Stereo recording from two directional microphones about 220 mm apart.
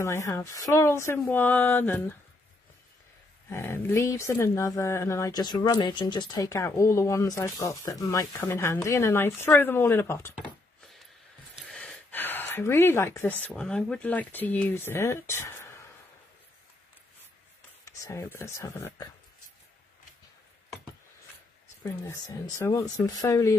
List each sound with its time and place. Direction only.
0.0 s speech: 15° left (ahead or behind)
3.4 s speech: 10° left (ahead or behind)
11.5 s speech: 5° left (ahead or behind)
17.8 s speech: 15° left (ahead or behind)
21.8 s speech: 15° left (ahead or behind)